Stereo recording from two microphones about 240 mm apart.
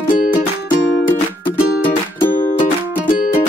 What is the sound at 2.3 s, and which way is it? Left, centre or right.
Music, left.